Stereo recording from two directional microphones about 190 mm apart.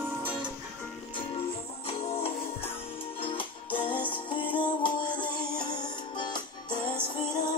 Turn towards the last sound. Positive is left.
turn(degrees=25)  # may be behind; listen again after turning